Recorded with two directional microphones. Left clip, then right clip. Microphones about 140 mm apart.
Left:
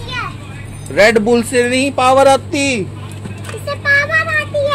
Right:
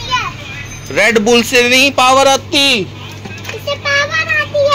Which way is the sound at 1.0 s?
5° left (ahead or behind).